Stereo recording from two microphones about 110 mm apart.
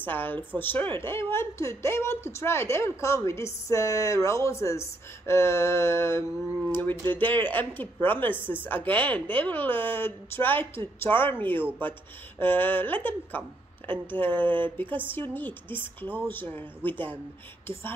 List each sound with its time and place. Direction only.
0.0 s a woman's voice: 15° left (ahead or behind)